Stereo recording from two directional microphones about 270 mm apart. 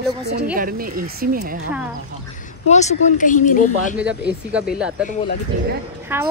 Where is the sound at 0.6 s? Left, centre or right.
Right.